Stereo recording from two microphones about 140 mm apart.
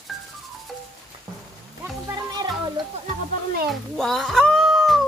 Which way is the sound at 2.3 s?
30° right (ahead or behind).